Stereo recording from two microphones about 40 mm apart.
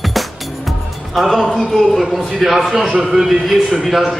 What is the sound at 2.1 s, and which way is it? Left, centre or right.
A man's voice, centre.